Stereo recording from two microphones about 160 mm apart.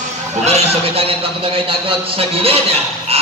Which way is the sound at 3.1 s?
40° right (ahead or behind).